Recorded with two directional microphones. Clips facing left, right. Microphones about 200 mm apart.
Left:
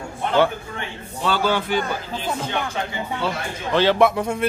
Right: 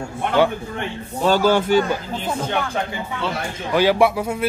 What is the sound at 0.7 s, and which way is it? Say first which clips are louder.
A man's voice: right 5 dB; 45° right (ahead or behind).